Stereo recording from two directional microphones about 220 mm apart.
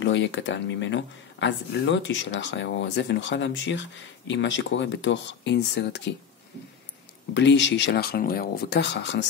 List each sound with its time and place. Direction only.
0.0 s speech: 55° left (ahead or behind)
7.3 s speech: 55° left (ahead or behind)